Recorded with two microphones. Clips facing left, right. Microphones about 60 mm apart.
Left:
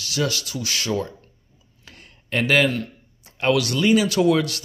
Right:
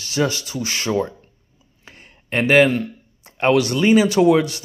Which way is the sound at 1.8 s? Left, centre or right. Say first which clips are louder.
Right 2 dB; right.